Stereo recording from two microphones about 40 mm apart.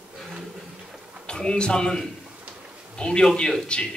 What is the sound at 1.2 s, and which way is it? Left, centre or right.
A man's voice, left.